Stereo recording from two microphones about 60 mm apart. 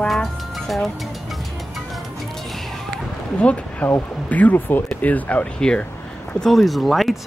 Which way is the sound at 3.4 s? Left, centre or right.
Left.